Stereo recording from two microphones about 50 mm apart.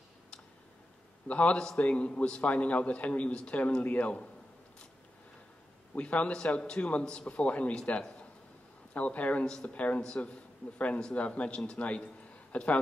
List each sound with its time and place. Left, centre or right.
1.2 s a man's voice: left
5.9 s a man's voice: left
8.9 s a man's voice: left